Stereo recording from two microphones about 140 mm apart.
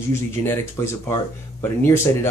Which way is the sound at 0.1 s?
20° left (ahead or behind).